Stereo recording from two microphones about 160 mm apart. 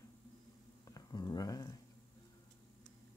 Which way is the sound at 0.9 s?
25° left (ahead or behind).